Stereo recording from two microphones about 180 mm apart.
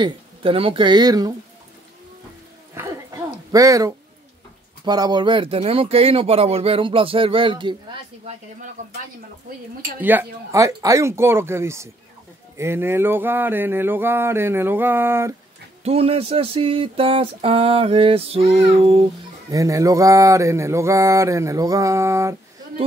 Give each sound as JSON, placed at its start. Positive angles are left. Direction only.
{"t": 0.0, "sound": "speech", "side_deg": -30}
{"t": 2.7, "sound": "dog", "side_deg": -15}
{"t": 4.8, "sound": "a sound", "side_deg": -20}
{"t": 9.9, "sound": "mantra", "side_deg": -10}
{"t": 15.8, "sound": "a sound", "side_deg": -35}
{"t": 19.5, "sound": "mantra", "side_deg": -20}